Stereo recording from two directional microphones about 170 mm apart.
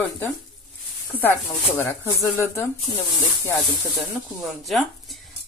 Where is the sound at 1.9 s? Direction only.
15° left (ahead or behind).